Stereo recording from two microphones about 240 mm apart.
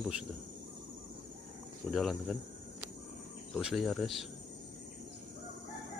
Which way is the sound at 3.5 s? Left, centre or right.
Centre.